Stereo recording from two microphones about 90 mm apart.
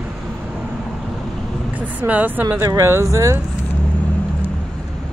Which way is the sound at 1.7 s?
15° right (ahead or behind).